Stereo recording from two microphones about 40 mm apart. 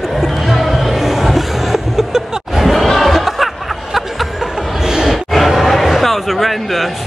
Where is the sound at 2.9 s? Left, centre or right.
Centre.